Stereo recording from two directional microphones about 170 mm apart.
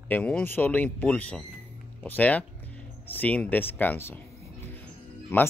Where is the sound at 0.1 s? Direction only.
10° left (ahead or behind).